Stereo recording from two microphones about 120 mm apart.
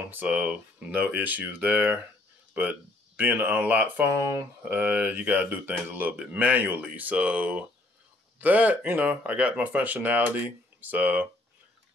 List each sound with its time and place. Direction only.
0.1 s speech: 10° right (ahead or behind)
4.7 s speech: 10° right (ahead or behind)